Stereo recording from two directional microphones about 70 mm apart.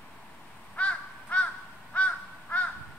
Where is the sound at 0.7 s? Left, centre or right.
Centre.